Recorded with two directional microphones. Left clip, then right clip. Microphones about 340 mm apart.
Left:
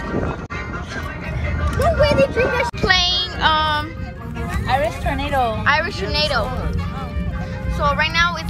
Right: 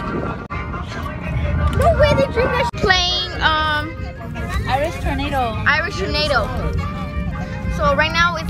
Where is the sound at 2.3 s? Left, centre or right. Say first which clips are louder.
Even; right.